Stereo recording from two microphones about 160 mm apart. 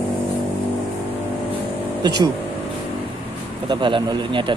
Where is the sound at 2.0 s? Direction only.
25° right (ahead or behind).